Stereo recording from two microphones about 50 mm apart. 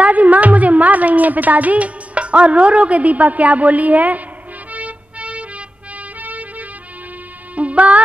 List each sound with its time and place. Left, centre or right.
0.0 s a woman's voice: right
4.7 s music: right
7.5 s music: right